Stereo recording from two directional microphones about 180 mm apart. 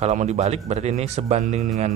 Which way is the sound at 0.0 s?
40° right (ahead or behind).